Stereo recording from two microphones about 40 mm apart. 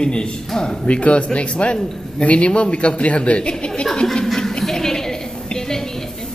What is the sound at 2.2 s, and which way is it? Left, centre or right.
Speech, left.